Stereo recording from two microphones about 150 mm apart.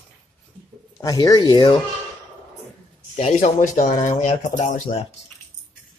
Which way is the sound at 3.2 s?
50° left (ahead or behind).